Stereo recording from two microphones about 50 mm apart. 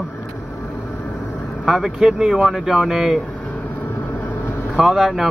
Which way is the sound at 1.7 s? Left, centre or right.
Centre.